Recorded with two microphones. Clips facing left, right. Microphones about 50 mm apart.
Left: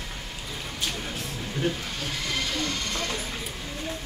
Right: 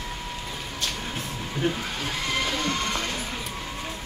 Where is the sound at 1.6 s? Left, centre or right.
Right.